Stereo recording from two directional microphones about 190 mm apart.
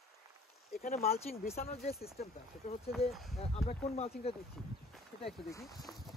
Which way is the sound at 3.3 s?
35° left (ahead or behind).